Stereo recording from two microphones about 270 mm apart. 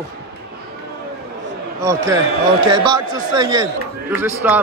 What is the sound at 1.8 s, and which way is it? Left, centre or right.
Speech, centre.